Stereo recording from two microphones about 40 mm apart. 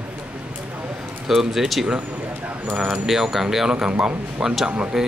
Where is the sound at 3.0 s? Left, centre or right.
Centre.